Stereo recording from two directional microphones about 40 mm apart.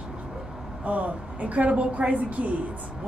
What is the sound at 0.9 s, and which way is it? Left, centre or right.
A woman's voice, right.